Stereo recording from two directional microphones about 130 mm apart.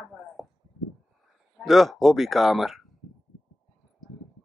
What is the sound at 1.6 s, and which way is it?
A woman's voice, centre (ahead or behind).